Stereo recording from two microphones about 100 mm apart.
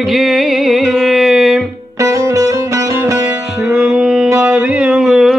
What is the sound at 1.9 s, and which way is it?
Music, 30° right (ahead or behind).